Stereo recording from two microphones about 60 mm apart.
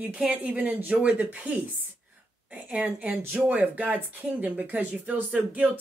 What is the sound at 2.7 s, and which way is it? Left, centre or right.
Speech, right.